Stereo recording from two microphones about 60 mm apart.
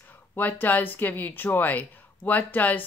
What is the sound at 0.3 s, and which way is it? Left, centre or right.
Speech, left.